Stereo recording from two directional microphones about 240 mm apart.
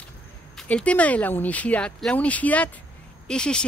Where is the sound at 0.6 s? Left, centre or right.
Centre.